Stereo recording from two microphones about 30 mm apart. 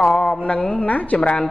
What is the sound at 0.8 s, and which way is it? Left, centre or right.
Speech, left.